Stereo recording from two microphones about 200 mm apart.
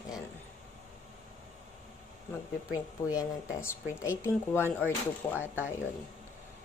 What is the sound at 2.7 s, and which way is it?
A woman's voice, 15° left (ahead or behind).